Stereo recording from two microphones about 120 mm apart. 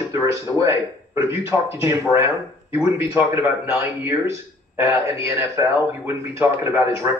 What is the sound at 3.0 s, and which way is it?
A man's voice, 20° right (ahead or behind).